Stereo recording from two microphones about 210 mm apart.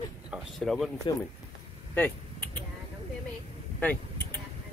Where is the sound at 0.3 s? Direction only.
Centre (ahead or behind).